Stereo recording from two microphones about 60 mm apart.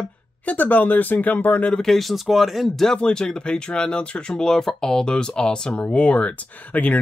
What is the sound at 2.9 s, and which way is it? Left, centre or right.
Speech, centre.